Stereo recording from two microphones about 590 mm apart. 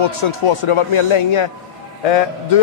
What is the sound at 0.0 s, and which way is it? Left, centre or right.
Speech, left.